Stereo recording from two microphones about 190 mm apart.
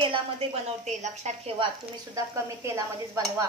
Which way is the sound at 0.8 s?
35° right (ahead or behind).